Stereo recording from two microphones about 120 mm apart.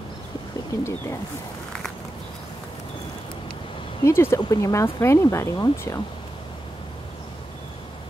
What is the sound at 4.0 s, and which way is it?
Speech, 20° left (ahead or behind).